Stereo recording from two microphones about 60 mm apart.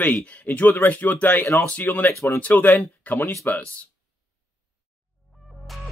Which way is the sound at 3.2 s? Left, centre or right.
Left.